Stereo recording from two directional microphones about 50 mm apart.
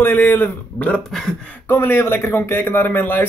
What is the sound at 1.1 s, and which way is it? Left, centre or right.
Speech, centre.